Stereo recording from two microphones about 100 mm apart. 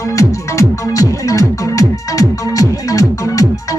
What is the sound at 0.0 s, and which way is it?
Music, 35° left (ahead or behind).